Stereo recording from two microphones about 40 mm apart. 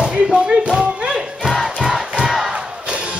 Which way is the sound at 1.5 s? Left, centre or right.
Centre.